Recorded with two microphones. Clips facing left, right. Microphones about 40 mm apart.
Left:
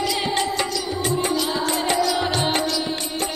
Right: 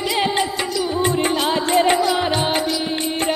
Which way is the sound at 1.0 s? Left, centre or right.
Right.